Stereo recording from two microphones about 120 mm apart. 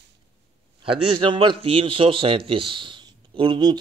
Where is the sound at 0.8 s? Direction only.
45° right (ahead or behind).